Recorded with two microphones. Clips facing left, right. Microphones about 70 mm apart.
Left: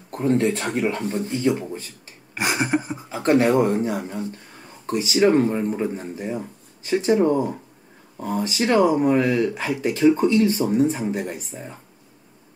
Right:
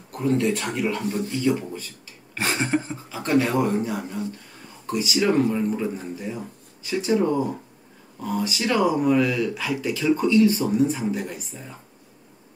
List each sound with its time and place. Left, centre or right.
0.1 s speech: left
2.3 s a sound: centre
3.1 s speech: left
4.8 s speech: left